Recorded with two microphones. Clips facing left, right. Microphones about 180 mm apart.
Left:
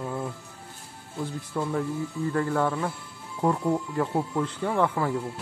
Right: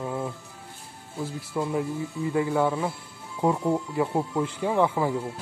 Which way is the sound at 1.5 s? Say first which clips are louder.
Right 1 dB; 10° right (ahead or behind).